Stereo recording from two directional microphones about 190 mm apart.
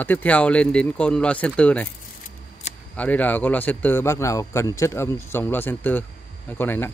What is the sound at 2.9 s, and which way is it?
Speech, 10° left (ahead or behind).